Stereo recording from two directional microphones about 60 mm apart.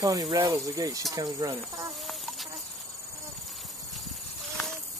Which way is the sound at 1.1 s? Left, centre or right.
Right.